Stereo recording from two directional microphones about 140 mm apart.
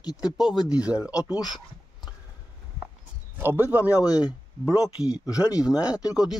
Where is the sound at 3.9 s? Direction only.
25° left (ahead or behind).